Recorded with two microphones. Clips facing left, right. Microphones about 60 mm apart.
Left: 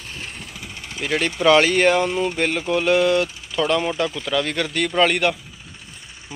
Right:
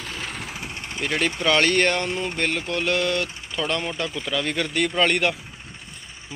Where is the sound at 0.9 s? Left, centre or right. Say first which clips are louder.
Left 2 dB; centre.